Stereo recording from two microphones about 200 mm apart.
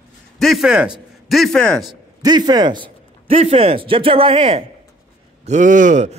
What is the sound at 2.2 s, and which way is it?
A man's voice, 20° right (ahead or behind).